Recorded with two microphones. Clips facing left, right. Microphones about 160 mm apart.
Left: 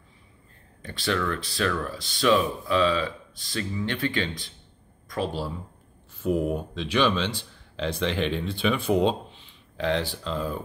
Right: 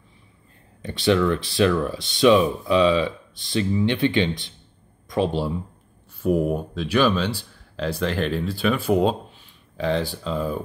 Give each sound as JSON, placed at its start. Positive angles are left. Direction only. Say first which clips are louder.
{"t": 0.8, "sound": "speech", "louder": "right 8 dB", "side_deg": -20}
{"t": 6.2, "sound": "speech", "louder": "right 4 dB", "side_deg": -10}